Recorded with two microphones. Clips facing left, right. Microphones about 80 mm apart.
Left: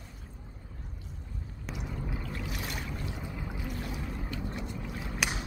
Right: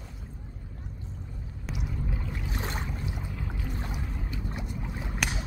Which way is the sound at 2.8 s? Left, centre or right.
Centre.